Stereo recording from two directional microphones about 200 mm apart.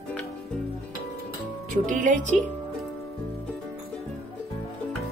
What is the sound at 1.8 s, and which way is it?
Speech, 40° right (ahead or behind).